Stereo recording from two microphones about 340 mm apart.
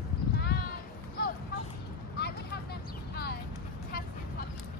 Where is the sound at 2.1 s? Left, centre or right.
Left.